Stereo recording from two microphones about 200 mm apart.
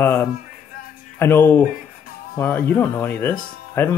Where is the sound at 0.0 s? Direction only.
10° left (ahead or behind).